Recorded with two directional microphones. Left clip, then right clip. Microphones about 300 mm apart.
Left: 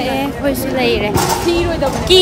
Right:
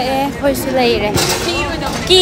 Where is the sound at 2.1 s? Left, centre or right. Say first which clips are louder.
Even; centre.